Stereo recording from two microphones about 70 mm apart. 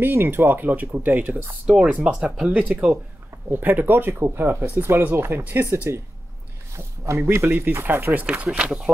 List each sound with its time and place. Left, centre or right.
0.0 s speech: right
3.4 s speech: right
8.3 s speech: centre